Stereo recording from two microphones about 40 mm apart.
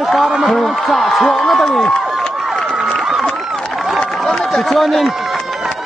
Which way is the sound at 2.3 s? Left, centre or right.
Centre.